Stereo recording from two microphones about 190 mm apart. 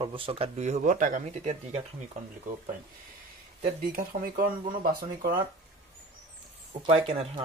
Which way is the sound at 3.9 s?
50° right (ahead or behind).